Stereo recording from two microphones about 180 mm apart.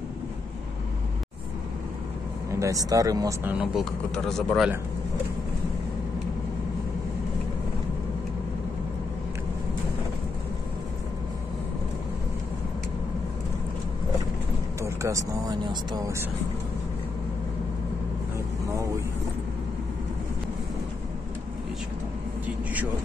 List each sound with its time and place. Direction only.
2.6 s speech: 20° right (ahead or behind); by 4.6 s centre (ahead or behind)
14.8 s speech: 15° right (ahead or behind)